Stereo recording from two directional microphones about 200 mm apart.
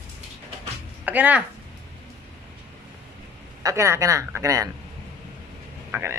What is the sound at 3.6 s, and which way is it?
A man's voice, 15° right (ahead or behind).